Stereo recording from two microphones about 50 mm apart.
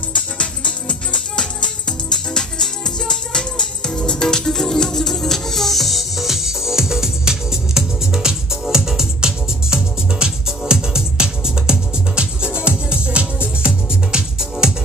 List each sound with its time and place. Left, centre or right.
0.4 s music: centre